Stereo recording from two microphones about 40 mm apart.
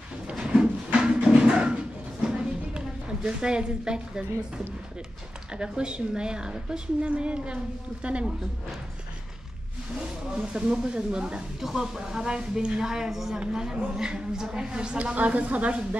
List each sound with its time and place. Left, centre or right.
0.9 s music: right
2.2 s a sound: right
3.3 s a woman's voice: right
5.5 s a woman's voice: right
9.9 s a woman's voice: centre
11.6 s a woman's voice: centre
13.1 s a woman's voice: centre
13.5 s a woman's voice: centre
15.0 s a woman's voice: right